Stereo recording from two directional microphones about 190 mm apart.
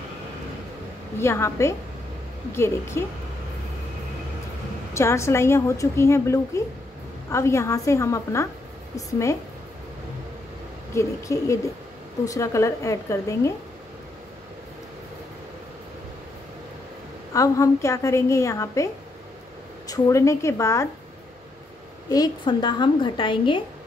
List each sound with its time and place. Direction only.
1.2 s a woman's voice: 15° left (ahead or behind)
4.9 s a woman's voice: 15° left (ahead or behind)
11.0 s a woman's voice: 15° left (ahead or behind)
17.3 s a woman's voice: 15° left (ahead or behind)
19.9 s a woman's voice: 15° left (ahead or behind)
22.1 s a woman's voice: 20° left (ahead or behind)